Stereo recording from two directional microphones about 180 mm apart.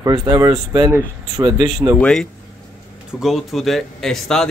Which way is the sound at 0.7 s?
20° right (ahead or behind).